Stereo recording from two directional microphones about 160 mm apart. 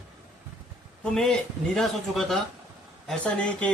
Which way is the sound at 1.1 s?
5° left (ahead or behind).